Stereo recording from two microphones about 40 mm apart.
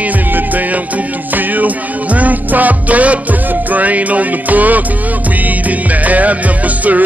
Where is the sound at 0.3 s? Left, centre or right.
Right.